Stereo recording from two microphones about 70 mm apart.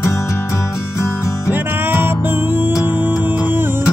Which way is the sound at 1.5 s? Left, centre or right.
Right.